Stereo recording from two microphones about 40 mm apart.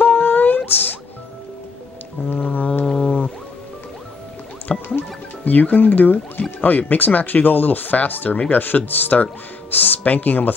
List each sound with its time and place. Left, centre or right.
0.0 s a sound: left
0.7 s speech: left
2.2 s music: left
4.8 s music: left
6.6 s speech: left